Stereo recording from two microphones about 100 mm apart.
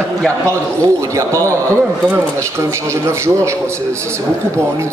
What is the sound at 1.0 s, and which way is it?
Speech, 30° right (ahead or behind).